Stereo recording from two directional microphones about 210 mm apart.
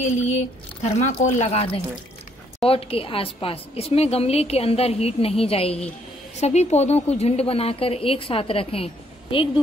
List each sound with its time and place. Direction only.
0.0 s a woman's voice: 35° left (ahead or behind)